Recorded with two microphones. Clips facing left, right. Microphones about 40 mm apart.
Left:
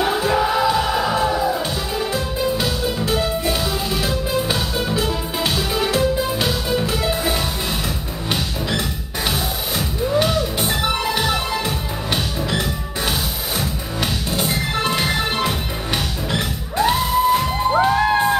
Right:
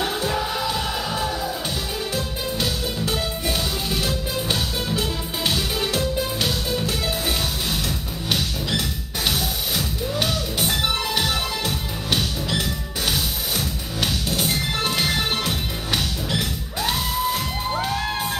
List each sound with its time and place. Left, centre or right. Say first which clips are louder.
0.0 s music: left 6 dB; centre
10.2 s music: left 4 dB; centre